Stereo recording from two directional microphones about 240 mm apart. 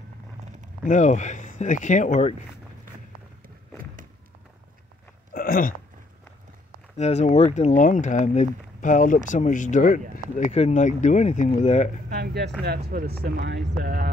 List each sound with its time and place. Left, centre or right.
0.8 s speech: left
5.3 s hiccup: left
7.0 s speech: left
12.1 s speech: right